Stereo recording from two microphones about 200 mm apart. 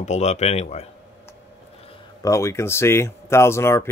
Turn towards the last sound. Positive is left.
turn(degrees=15)  # may be behind; listen again after turning